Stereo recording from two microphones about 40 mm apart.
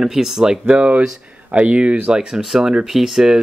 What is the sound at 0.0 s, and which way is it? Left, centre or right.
Speech, centre.